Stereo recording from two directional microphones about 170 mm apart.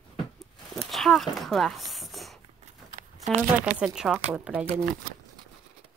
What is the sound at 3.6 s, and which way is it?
A woman's voice, 5° right (ahead or behind).